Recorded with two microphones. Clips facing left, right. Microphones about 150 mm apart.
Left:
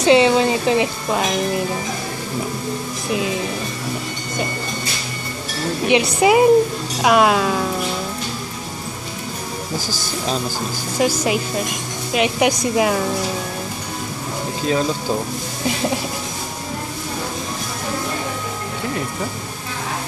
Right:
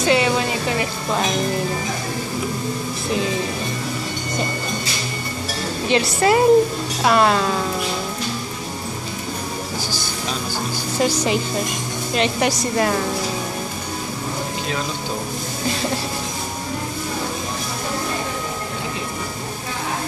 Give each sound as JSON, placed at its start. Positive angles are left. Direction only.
{"t": 0.0, "sound": "a sound", "side_deg": 25}
{"t": 5.9, "sound": "speech", "side_deg": 10}
{"t": 11.0, "sound": "a woman's voice", "side_deg": 5}